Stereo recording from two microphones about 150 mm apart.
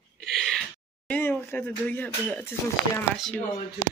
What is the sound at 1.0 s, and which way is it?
Speech, 10° left (ahead or behind).